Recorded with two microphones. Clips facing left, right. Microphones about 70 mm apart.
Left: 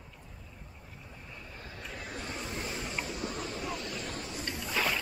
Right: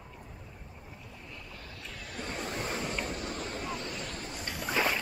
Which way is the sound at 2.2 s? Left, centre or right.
Right.